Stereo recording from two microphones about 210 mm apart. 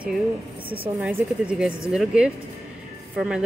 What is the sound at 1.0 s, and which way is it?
Speech, 5° right (ahead or behind).